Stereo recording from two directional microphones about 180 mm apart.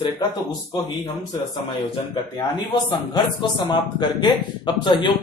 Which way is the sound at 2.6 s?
25° left (ahead or behind).